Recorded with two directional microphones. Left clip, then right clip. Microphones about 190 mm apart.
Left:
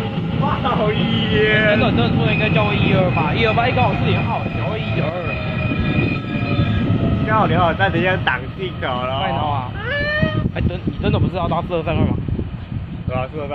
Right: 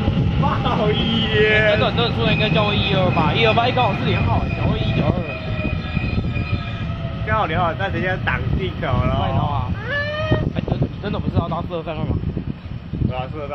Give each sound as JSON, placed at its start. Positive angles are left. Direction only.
{"t": 1.1, "sound": "speech", "side_deg": -10}
{"t": 2.0, "sound": "speech", "side_deg": -30}
{"t": 7.2, "sound": "speech", "side_deg": 5}
{"t": 7.6, "sound": "speech", "side_deg": 25}
{"t": 11.1, "sound": "speech", "side_deg": 40}